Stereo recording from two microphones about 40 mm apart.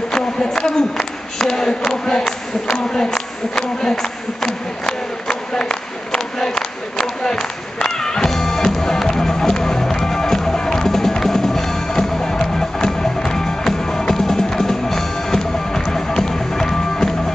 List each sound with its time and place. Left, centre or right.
0.1 s speech: centre
1.9 s a sound: centre
7.8 s music: centre